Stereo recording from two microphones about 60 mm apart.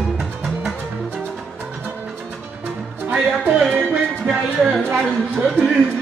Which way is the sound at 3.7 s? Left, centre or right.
Centre.